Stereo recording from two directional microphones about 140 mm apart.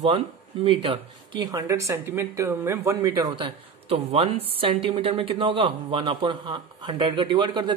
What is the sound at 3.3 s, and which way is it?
A woman's voice, 35° right (ahead or behind).